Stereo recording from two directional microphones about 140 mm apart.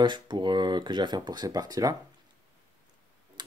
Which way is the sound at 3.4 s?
30° right (ahead or behind).